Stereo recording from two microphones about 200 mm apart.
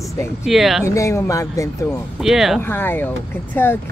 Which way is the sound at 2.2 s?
Centre (ahead or behind).